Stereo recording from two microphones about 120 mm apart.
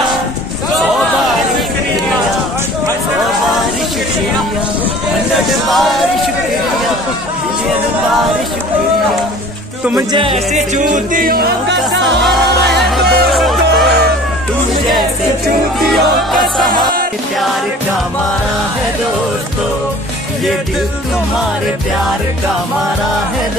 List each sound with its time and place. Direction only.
5.7 s a sound: centre (ahead or behind)
10.3 s music: 80° right
12.9 s music: centre (ahead or behind)